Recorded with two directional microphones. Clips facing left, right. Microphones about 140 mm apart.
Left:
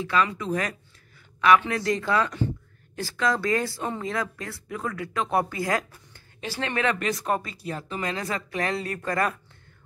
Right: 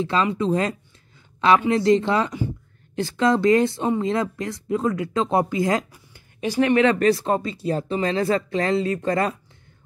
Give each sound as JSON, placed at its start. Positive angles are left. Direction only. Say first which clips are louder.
{"t": 0.0, "sound": "speech", "louder": "right 4 dB", "side_deg": -25}